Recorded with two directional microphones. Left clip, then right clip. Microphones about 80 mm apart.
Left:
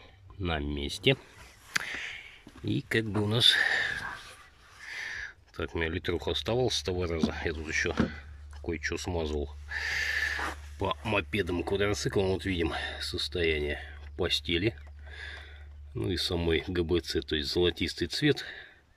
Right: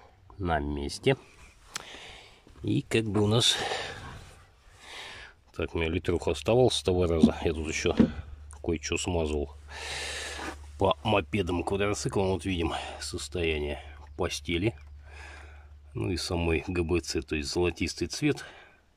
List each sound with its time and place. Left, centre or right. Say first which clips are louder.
0.4 s speech: right 3 dB; centre
1.7 s whispering: left 9 dB; right
2.0 s whispering: left 8 dB; right
2.6 s speech: right 2 dB; right
4.8 s a sound: left 5 dB; right
5.2 s speech: right 2 dB; right
9.8 s snort: left 6 dB; right
10.8 s speech: right 5 dB; right
11.2 s speech: right 1 dB; right